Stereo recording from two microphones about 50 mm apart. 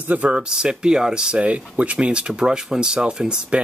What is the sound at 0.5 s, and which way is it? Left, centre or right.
Speech, centre.